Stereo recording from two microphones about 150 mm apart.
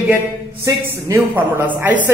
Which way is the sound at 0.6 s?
20° right (ahead or behind).